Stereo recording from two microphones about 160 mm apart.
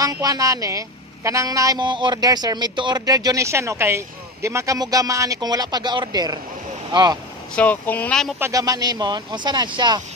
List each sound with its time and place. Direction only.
0.0 s a woman's voice: 25° right (ahead or behind)
7.5 s speech: 10° left (ahead or behind)
8.4 s a woman's voice: 20° right (ahead or behind)